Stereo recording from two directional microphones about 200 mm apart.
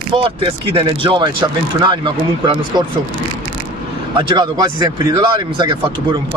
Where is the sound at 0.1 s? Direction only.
25° right (ahead or behind).